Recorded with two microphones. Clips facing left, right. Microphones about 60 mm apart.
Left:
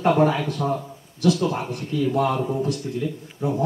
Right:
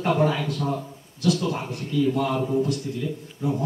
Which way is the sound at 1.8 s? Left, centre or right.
Left.